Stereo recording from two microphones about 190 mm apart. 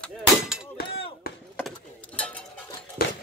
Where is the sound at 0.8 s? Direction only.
30° left (ahead or behind).